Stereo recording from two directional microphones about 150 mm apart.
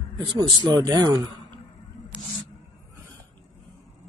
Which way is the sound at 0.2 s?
30° right (ahead or behind).